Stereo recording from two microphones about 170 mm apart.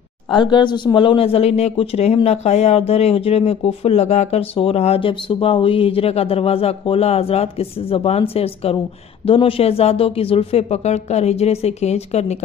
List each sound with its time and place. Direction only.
0.3 s speech: 25° left (ahead or behind)